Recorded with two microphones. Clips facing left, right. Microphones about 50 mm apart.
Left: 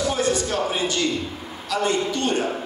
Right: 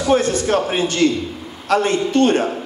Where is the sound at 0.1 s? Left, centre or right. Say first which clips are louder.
Right 7 dB; right.